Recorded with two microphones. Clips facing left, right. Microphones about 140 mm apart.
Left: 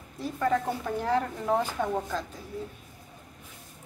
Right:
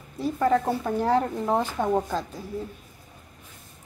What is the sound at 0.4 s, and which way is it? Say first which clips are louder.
A woman's voice: right 4 dB; 35° right (ahead or behind).